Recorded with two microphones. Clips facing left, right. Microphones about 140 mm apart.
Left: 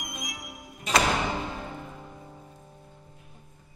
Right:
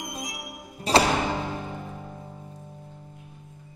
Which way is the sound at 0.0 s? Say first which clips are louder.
Right 4 dB; 25° right (ahead or behind).